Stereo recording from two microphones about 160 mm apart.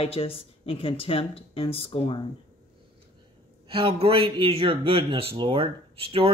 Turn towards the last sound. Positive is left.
turn(degrees=-35)  # may be behind; listen again after turning